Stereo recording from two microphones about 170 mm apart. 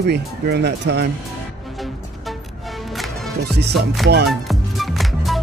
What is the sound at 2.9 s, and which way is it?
Music, centre (ahead or behind).